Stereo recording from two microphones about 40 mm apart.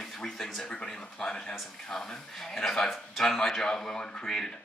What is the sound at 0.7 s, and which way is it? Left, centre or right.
A man's voice, centre.